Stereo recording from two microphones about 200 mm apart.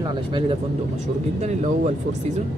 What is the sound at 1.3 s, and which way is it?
Speech, 35° right (ahead or behind).